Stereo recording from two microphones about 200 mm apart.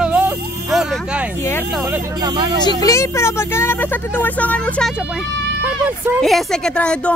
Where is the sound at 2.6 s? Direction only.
15° left (ahead or behind).